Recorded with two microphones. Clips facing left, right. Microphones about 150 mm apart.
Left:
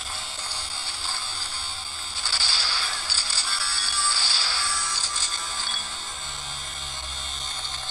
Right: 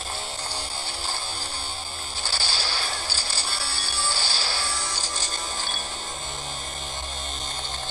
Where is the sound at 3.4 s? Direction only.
30° right (ahead or behind).